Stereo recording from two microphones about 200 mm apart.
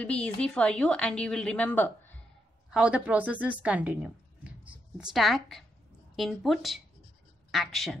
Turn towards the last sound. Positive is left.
turn(degrees=0)  # may be behind; listen again after turning